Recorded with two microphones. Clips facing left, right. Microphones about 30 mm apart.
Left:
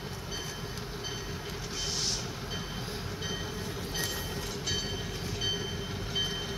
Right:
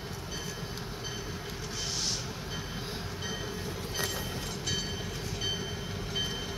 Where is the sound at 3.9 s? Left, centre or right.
Centre.